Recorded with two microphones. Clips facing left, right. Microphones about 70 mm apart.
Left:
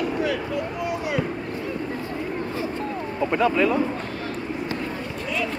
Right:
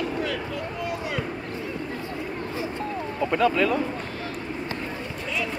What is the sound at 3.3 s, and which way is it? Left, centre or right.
Speech, left.